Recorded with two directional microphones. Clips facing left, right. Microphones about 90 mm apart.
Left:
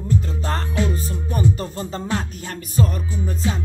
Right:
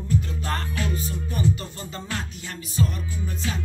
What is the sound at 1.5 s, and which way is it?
Music, 35° left (ahead or behind).